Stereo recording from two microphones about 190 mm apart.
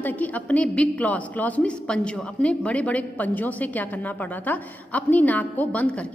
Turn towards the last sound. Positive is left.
turn(degrees=5)  # may be behind; listen again after turning